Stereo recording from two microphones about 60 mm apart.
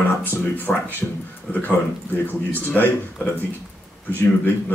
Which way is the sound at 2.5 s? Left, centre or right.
Left.